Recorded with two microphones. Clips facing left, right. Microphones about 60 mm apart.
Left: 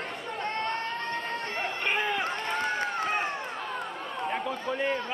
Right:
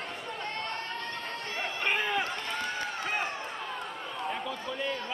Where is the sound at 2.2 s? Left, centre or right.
Left.